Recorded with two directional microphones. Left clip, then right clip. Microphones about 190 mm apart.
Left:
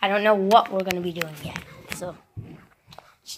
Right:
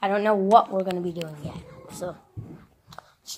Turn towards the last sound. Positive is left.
turn(degrees=-5)  # may be behind; listen again after turning